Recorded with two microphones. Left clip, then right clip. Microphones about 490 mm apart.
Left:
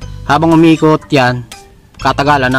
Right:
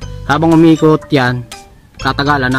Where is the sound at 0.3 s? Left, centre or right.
Centre.